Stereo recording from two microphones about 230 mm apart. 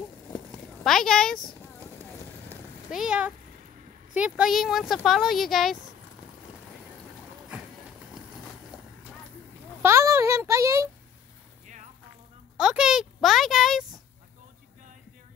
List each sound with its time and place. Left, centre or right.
0.8 s speech: centre
2.5 s cat: centre
4.1 s speech: centre
9.8 s a child's voice: centre
11.6 s music: right
12.5 s speech: centre